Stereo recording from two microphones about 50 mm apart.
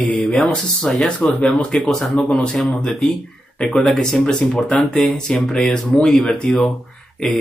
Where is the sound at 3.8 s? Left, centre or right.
Centre.